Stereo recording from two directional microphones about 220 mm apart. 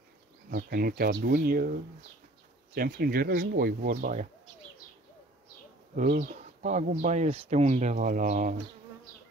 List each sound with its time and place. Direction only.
0.5 s speech: 45° right (ahead or behind)
6.0 s speech: 40° right (ahead or behind)